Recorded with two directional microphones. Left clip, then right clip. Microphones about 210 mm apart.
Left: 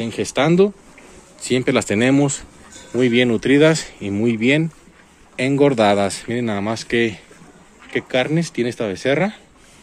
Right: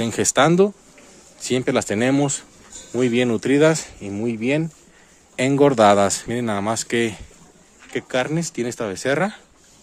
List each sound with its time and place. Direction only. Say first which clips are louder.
0.0 s speech: right 2 dB; 30° right (ahead or behind)
0.5 s speech: left 2 dB; 10° right (ahead or behind)
4.1 s speech: left 5 dB; centre (ahead or behind)
5.3 s speech: even; 20° right (ahead or behind)